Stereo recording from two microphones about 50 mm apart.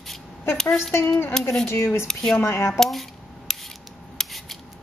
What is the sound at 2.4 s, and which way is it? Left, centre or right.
Speech, left.